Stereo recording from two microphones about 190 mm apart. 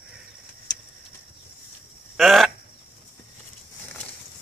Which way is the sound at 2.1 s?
Centre (ahead or behind).